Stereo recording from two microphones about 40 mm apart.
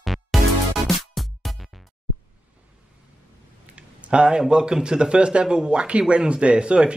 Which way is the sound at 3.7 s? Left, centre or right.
Right.